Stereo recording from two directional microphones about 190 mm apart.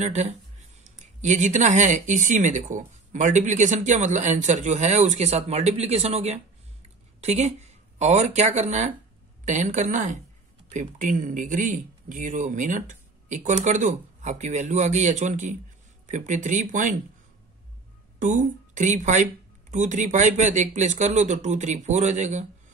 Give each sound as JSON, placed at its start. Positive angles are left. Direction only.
{"t": 0.0, "sound": "speech", "side_deg": -35}
{"t": 18.2, "sound": "speech", "side_deg": -40}